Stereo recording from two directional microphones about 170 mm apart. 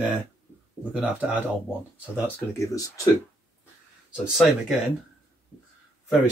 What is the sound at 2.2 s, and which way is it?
Speech, 15° left (ahead or behind).